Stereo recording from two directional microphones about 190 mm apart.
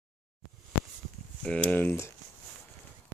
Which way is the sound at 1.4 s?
5° left (ahead or behind).